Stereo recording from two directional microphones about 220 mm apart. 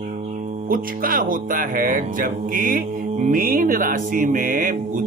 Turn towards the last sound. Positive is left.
turn(degrees=-40)  # may be behind; listen again after turning